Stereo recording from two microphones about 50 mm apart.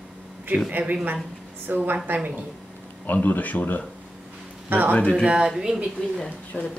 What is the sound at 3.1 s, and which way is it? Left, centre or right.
Speech, left.